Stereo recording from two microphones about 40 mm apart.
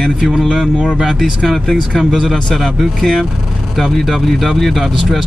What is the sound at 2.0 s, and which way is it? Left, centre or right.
Speech, centre.